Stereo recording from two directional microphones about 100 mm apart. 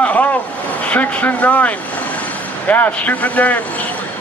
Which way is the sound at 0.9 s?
15° left (ahead or behind).